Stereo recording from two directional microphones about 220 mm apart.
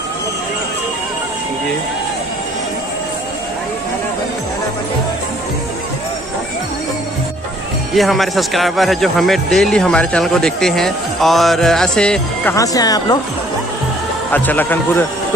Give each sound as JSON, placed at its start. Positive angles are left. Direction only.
{"t": 7.9, "sound": "speech", "side_deg": 0}
{"t": 12.5, "sound": "a man's voice", "side_deg": 15}
{"t": 14.3, "sound": "a man's voice", "side_deg": 10}